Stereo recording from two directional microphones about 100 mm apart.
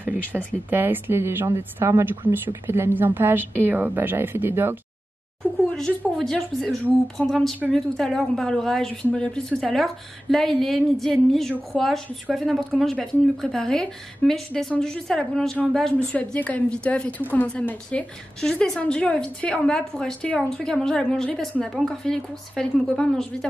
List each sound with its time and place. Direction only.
0.0 s a sound: 20° right (ahead or behind)
0.7 s a woman's voice: 20° right (ahead or behind)
5.8 s a woman's voice: 5° left (ahead or behind)